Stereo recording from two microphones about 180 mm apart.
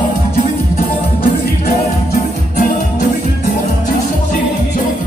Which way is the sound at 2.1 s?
45° left (ahead or behind).